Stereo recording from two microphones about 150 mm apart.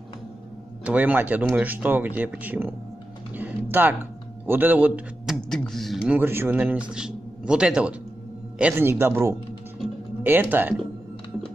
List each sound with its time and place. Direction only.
0.8 s speech: 10° right (ahead or behind)
3.7 s speech: 15° right (ahead or behind)